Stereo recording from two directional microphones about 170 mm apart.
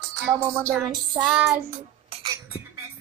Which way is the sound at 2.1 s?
35° right (ahead or behind).